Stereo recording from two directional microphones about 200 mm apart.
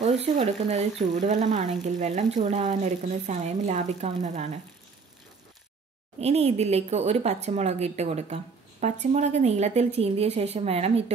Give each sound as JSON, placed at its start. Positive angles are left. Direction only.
{"t": 0.2, "sound": "speech", "side_deg": -35}
{"t": 6.1, "sound": "speech", "side_deg": -30}